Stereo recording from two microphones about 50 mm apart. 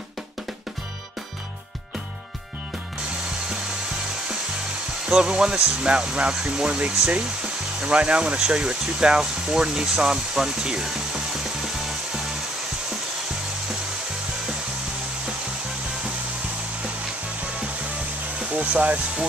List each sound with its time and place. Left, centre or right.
5.0 s speech: centre
18.5 s speech: right